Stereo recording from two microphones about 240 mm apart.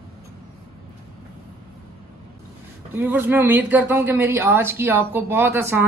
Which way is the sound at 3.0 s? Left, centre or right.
Centre.